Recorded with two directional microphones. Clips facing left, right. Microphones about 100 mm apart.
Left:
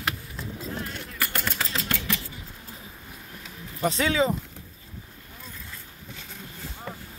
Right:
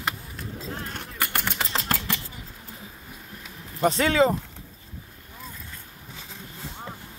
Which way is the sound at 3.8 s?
50° right (ahead or behind).